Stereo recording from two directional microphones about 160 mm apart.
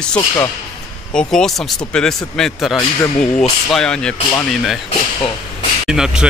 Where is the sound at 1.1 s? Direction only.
5° left (ahead or behind).